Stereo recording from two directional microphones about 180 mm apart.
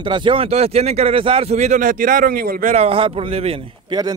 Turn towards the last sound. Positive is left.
turn(degrees=-25)  # may be behind; listen again after turning